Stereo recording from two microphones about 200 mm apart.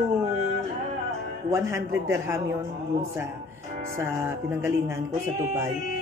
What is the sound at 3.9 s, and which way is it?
Speech, 15° right (ahead or behind).